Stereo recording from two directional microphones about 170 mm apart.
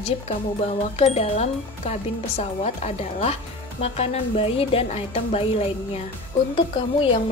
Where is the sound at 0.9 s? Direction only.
40° left (ahead or behind).